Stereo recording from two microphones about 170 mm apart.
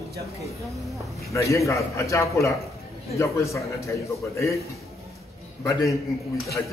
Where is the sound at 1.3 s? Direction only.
15° left (ahead or behind).